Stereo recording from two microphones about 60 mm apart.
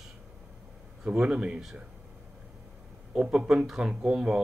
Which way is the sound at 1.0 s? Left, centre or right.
Centre.